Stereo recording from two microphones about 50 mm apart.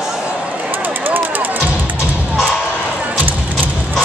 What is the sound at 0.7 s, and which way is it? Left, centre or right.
Music, right.